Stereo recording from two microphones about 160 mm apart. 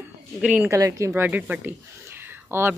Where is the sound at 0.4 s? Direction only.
5° right (ahead or behind).